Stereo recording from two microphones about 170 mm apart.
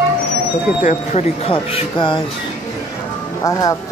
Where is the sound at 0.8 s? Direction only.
40° left (ahead or behind).